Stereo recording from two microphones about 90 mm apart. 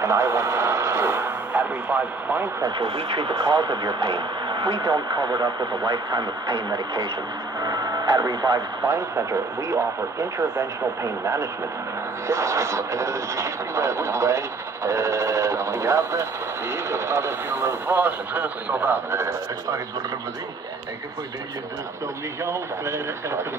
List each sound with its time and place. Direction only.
0.0 s radio: 30° right (ahead or behind)
2.8 s speech: 60° right (ahead or behind)
3.5 s speech: 45° right (ahead or behind)
7.6 s music: 40° right (ahead or behind)
8.2 s speech: 45° right (ahead or behind)
12.3 s speech: 35° right (ahead or behind)
14.9 s a sound: 35° right (ahead or behind)
16.9 s speech: 30° right (ahead or behind)
19.1 s speech: 35° right (ahead or behind)
22.4 s speech: 30° right (ahead or behind)